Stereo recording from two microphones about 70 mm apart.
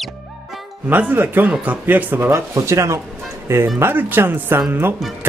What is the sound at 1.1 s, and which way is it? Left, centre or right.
Speech, right.